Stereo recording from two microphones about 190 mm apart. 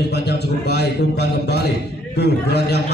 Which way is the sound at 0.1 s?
60° left (ahead or behind).